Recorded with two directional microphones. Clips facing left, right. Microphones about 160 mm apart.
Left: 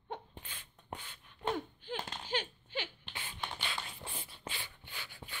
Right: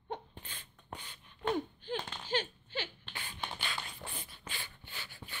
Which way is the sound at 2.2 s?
15° left (ahead or behind).